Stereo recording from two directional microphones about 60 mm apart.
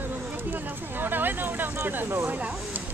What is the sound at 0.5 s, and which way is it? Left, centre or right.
Speech, right.